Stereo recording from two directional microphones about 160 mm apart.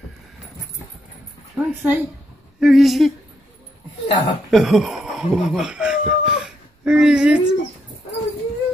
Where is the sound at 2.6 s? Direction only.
Centre (ahead or behind).